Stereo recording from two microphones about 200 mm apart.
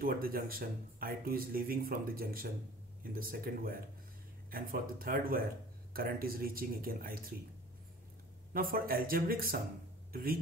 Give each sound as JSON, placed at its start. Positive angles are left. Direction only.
{"t": 0.0, "sound": "speech", "side_deg": -45}
{"t": 8.5, "sound": "speech", "side_deg": -45}